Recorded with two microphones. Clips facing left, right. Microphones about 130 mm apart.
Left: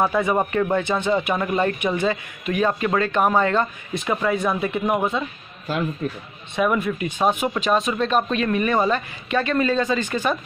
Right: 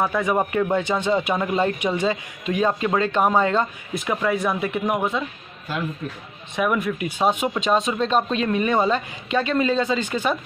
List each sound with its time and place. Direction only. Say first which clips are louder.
0.0 s speech: left 2 dB; 10° left (ahead or behind)
0.5 s speech: even; 15° right (ahead or behind)
3.9 s speech: left 1 dB; centre (ahead or behind)
6.5 s speech: left 1 dB; centre (ahead or behind)